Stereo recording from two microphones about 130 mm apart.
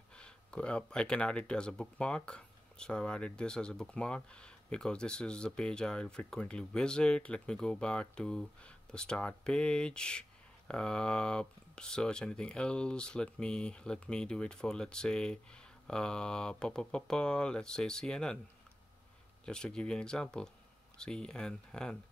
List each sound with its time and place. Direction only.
0.1 s speech: 10° left (ahead or behind)
19.4 s speech: 5° left (ahead or behind)